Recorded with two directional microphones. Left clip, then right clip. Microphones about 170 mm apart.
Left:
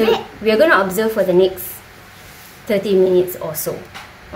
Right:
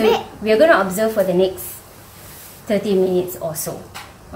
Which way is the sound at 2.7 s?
65° left (ahead or behind).